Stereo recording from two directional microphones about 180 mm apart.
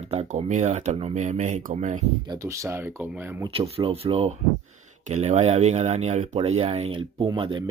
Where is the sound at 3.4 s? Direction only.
30° right (ahead or behind).